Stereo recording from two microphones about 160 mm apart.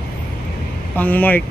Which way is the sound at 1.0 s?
10° left (ahead or behind).